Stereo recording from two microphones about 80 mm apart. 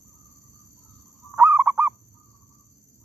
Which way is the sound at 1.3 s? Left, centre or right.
Right.